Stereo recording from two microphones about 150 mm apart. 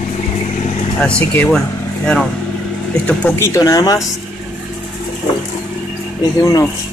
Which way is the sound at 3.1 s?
10° left (ahead or behind).